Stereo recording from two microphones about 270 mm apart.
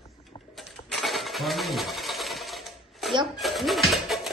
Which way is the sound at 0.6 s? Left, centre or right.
Centre.